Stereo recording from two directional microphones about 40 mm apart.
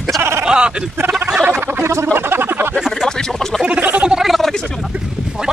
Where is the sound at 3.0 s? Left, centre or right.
Centre.